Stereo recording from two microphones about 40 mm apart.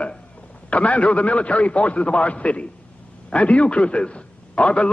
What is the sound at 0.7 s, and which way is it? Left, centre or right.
A man's voice, left.